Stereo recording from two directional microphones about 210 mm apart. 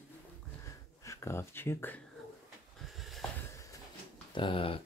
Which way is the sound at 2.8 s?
Centre (ahead or behind).